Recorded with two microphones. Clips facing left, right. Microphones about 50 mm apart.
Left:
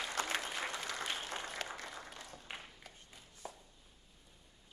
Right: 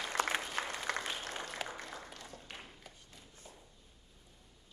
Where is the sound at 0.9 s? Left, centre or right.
Right.